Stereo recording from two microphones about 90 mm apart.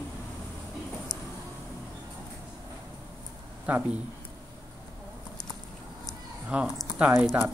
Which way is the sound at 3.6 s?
20° right (ahead or behind).